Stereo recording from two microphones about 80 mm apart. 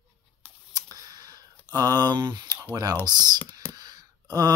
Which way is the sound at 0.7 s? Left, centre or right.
Right.